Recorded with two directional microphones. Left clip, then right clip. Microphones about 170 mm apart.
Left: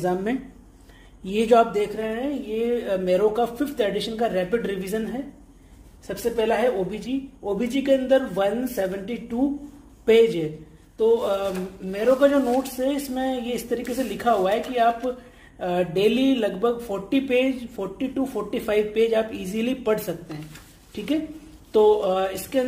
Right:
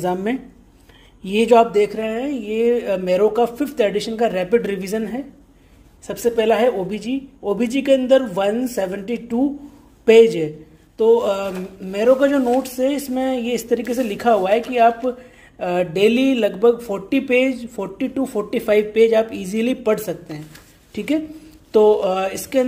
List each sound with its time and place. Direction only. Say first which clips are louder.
0.0 s a woman's voice: right 3 dB; 30° right (ahead or behind)